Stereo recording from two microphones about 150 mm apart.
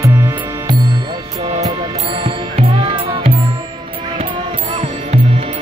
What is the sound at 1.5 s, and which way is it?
Music, 40° right (ahead or behind).